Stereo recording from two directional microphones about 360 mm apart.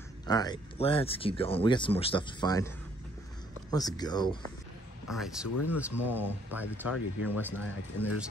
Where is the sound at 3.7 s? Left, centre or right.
Centre.